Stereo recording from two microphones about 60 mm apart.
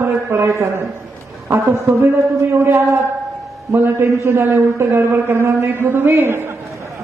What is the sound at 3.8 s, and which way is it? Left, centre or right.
A man's voice, right.